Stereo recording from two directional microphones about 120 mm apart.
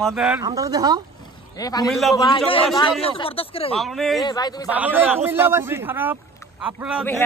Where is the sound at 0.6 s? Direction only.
30° right (ahead or behind).